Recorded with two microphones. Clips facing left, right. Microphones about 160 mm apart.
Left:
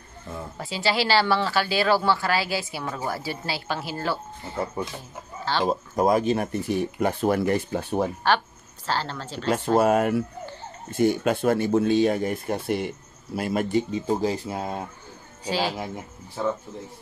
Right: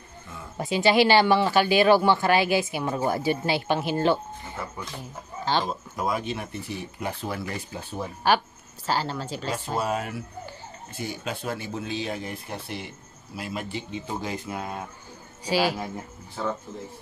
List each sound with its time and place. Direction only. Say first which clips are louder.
0.6 s speech: right 6 dB; 20° right (ahead or behind)
5.7 s speech: left 7 dB; 40° left (ahead or behind); by 8.1 s 60° left (ahead or behind)
8.8 s speech: right 1 dB; 10° right (ahead or behind)
9.5 s speech: left 9 dB; 55° left (ahead or behind); by 14.8 s 30° left (ahead or behind)
15.4 s speech: right 2 dB; 10° right (ahead or behind)